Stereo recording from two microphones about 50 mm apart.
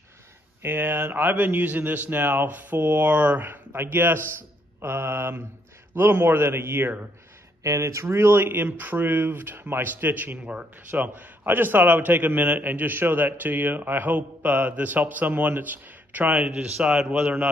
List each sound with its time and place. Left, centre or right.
0.6 s a man's voice: right
3.4 s speech: right
4.8 s mantra: right
5.9 s speech: right
7.6 s speech: right
10.4 s a man's voice: right
16.5 s a man's voice: centre